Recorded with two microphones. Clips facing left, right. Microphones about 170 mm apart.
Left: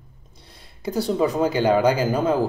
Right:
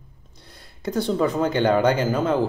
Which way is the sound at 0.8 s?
10° left (ahead or behind).